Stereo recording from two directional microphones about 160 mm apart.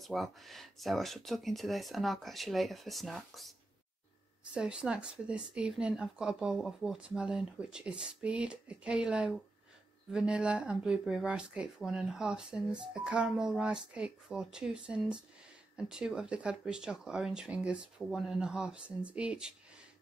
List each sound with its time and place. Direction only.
0.0 s speech: centre (ahead or behind)
4.6 s speech: 5° right (ahead or behind)